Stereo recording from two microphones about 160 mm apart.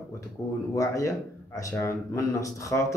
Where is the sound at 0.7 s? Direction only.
20° left (ahead or behind).